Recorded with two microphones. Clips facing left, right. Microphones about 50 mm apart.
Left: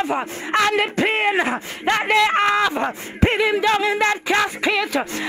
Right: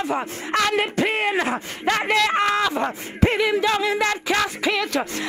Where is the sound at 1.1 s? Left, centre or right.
Left.